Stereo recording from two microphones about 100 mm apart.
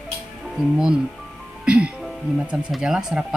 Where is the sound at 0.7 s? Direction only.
10° right (ahead or behind).